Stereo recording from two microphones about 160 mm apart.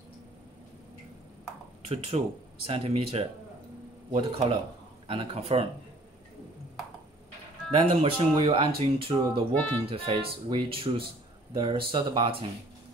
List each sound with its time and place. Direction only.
1.9 s speech: 40° right (ahead or behind)
7.7 s speech: 35° right (ahead or behind)